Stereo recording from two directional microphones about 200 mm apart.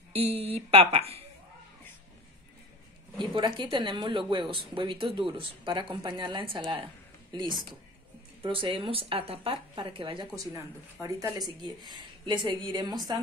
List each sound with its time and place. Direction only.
0.1 s speech: 30° right (ahead or behind)
3.3 s speech: 25° right (ahead or behind)